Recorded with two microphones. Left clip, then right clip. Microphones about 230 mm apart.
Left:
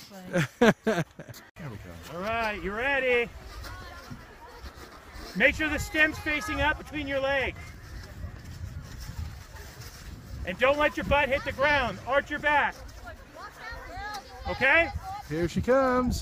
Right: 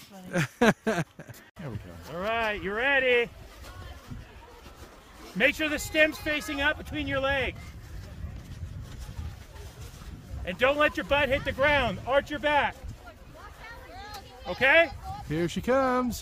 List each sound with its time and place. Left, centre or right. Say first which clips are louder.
0.3 s speech: left 1 dB; centre
2.1 s a sound: right 1 dB; right
5.4 s speech: left 1 dB; right
10.4 s speech: even; right
14.5 s speech: right 2 dB; right
15.2 s speech: left 1 dB; centre